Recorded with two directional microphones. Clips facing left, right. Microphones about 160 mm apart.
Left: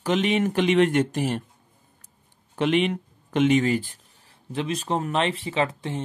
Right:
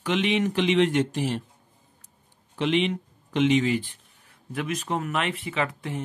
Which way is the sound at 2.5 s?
50° left (ahead or behind).